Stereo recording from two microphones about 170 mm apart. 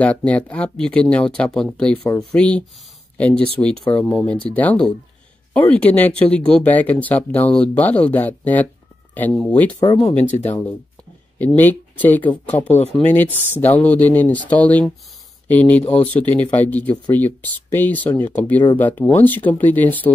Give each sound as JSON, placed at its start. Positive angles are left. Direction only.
{"t": 0.0, "sound": "speech", "side_deg": 5}
{"t": 9.8, "sound": "speech", "side_deg": 25}
{"t": 10.2, "sound": "speech", "side_deg": 10}